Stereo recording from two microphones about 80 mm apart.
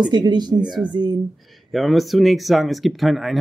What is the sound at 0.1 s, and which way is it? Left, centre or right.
Speech, right.